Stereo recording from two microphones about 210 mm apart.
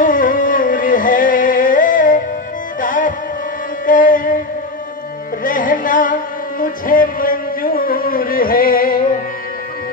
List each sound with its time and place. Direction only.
0.0 s music: 40° left (ahead or behind)
5.4 s music: 40° left (ahead or behind)
6.6 s a sound: 40° left (ahead or behind)